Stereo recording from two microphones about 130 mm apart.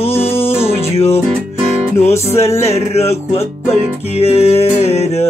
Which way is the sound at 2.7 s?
55° left (ahead or behind).